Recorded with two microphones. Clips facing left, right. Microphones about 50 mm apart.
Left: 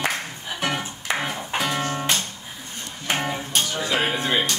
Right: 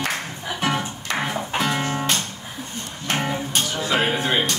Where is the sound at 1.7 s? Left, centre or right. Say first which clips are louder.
Right 1 dB; centre.